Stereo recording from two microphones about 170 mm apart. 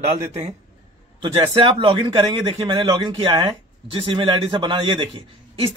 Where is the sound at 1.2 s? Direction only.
30° right (ahead or behind).